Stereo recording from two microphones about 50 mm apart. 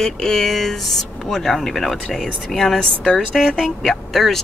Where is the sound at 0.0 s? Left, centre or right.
Centre.